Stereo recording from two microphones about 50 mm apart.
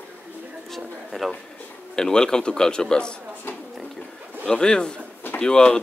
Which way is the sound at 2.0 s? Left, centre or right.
Centre.